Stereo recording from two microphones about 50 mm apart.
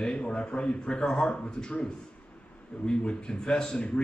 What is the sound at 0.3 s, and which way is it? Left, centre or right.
A man's voice, centre.